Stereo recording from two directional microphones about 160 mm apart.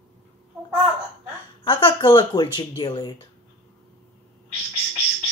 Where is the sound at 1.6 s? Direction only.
30° left (ahead or behind).